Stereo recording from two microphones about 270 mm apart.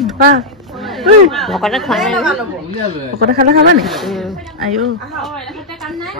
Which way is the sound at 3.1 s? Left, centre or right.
Right.